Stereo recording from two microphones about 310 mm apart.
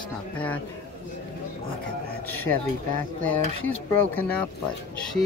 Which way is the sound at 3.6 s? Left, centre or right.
Centre.